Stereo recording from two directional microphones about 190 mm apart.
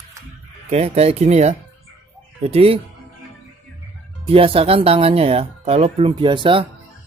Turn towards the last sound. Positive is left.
turn(degrees=-25)  # may be behind; listen again after turning